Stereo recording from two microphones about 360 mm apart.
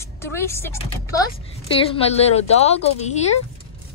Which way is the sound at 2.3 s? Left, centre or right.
Centre.